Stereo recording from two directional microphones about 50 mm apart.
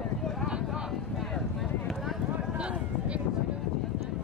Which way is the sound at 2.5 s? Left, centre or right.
Right.